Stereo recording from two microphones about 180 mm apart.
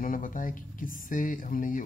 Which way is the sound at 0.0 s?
50° left (ahead or behind).